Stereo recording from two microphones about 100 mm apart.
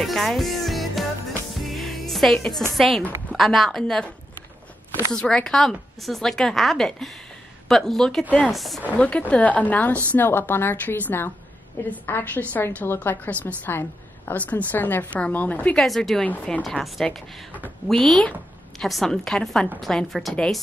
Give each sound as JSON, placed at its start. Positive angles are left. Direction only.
{"t": 0.0, "sound": "music", "side_deg": 5}
{"t": 2.7, "sound": "speech", "side_deg": 0}
{"t": 5.1, "sound": "speech", "side_deg": 10}
{"t": 8.9, "sound": "a woman's voice", "side_deg": 10}